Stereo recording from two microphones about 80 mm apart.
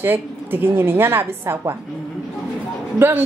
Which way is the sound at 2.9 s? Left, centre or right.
Right.